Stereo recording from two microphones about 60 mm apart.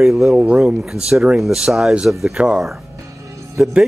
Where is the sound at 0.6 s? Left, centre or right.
Centre.